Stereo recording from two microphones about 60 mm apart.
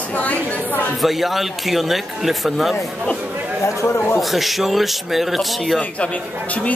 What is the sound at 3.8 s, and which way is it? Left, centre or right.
Speech, left.